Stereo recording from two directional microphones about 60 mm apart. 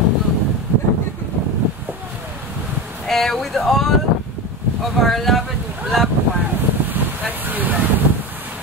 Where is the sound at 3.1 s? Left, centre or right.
Centre.